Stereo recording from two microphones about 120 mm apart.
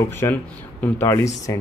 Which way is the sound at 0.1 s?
15° left (ahead or behind).